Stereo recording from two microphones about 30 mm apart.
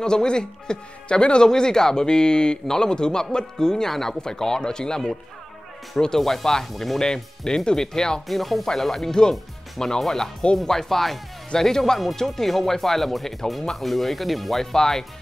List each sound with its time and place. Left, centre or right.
0.0 s a man's voice: left
3.9 s speech: centre
4.2 s a man's voice: left
6.1 s speech: centre
7.0 s a man's voice: left
8.3 s speech: centre
11.5 s a man's voice: centre
11.8 s speech: centre
14.6 s speech: centre